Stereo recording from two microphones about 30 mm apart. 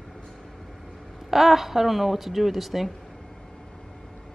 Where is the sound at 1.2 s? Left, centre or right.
Centre.